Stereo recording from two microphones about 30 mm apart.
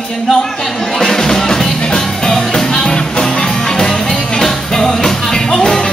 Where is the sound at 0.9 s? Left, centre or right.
Centre.